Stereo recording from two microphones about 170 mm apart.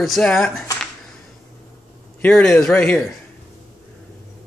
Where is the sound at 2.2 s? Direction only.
10° left (ahead or behind).